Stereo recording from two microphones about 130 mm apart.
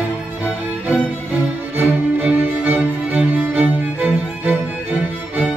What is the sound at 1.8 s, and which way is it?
Music, 15° right (ahead or behind).